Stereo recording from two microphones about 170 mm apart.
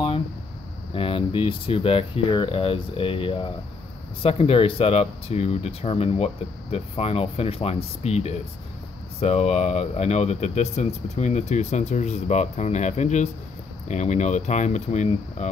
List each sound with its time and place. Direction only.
0.9 s speech: 30° left (ahead or behind)